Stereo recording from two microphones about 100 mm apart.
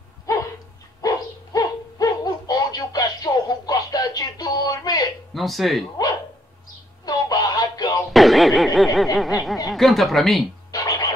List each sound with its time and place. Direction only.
0.3 s dog: 35° left (ahead or behind)
1.0 s bow-wow: 35° left (ahead or behind)
5.3 s speech: centre (ahead or behind)
7.1 s music: 40° left (ahead or behind)
8.1 s speech: centre (ahead or behind)
10.7 s music: 40° left (ahead or behind)